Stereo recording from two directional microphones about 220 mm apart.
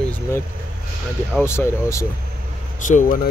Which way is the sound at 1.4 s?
10° left (ahead or behind).